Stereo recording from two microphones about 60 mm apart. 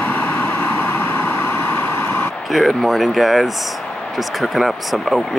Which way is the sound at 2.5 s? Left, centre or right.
Centre.